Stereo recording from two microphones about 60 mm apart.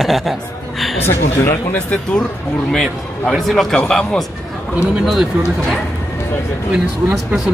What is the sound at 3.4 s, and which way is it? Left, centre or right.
Speech, centre.